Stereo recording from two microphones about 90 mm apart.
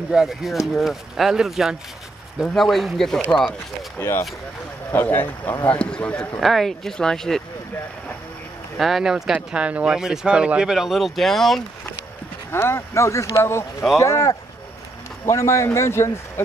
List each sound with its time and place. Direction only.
0.1 s speech: 5° right (ahead or behind)
4.0 s speech: 25° left (ahead or behind); by 7.4 s 5° left (ahead or behind)
8.7 s speech: centre (ahead or behind)
12.4 s speech: 25° left (ahead or behind)